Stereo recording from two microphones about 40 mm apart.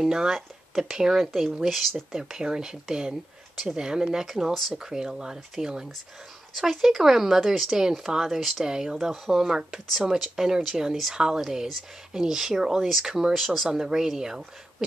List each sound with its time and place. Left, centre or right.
0.0 s speech: centre
2.1 s speech: centre
8.6 s speech: centre
9.1 s speech: centre
13.3 s speech: centre
13.7 s speech: centre